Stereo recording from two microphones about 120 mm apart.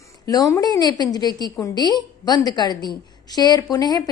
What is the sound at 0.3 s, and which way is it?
A woman's voice, 30° left (ahead or behind).